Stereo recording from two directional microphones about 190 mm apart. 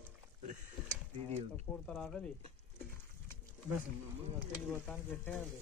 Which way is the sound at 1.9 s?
Centre (ahead or behind).